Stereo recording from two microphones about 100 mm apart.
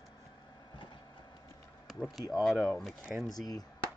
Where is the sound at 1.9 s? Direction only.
Centre (ahead or behind).